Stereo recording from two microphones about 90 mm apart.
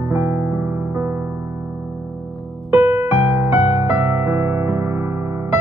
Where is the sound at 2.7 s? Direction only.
20° right (ahead or behind).